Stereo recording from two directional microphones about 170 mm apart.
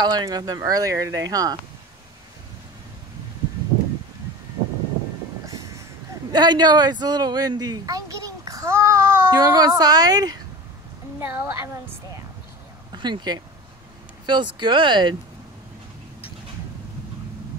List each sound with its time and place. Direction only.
0.0 s speech: 25° right (ahead or behind)
6.3 s speech: 25° right (ahead or behind)
11.1 s a woman's voice: 10° right (ahead or behind)
12.9 s speech: 25° right (ahead or behind)